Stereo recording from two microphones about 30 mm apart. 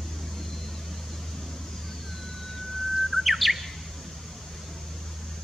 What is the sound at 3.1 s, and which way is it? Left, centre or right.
Chirp, centre.